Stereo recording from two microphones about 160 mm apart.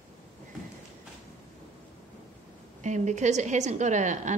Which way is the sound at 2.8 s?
50° right (ahead or behind).